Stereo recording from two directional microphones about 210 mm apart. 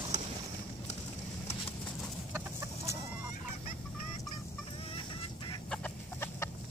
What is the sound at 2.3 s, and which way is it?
Chicken, 15° right (ahead or behind).